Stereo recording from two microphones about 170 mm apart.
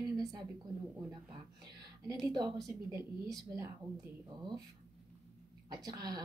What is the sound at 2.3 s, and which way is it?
A woman's voice, 25° right (ahead or behind).